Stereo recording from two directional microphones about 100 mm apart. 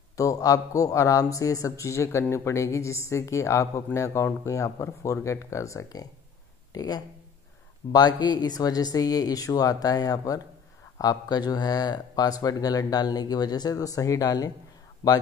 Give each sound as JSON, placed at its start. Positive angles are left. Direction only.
{"t": 0.2, "sound": "speech", "side_deg": 35}